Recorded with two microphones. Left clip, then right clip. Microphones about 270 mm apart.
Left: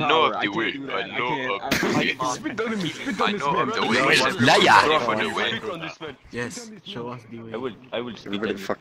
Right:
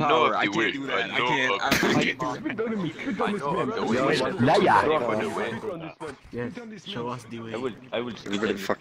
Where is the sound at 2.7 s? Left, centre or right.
Left.